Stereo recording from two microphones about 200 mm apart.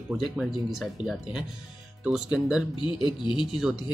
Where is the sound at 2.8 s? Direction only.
25° left (ahead or behind).